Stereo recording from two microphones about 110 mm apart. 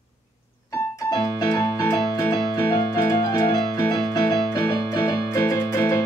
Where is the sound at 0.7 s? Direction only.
30° left (ahead or behind).